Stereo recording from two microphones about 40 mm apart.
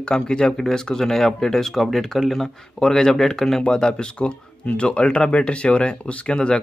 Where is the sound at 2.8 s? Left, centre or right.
Centre.